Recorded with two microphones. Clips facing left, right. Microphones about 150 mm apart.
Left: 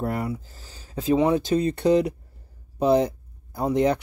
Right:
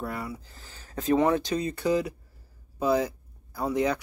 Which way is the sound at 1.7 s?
60° left (ahead or behind).